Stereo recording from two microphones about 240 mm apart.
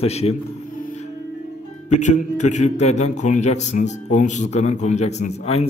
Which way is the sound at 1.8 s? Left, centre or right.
Left.